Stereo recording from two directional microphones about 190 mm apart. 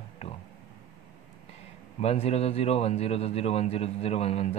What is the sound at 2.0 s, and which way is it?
Speech, 35° left (ahead or behind).